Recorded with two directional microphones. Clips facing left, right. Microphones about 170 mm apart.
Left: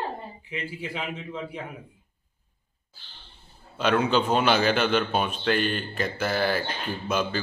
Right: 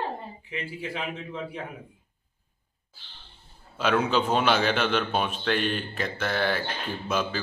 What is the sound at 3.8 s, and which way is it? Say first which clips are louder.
A man's voice: left 1 dB; centre (ahead or behind).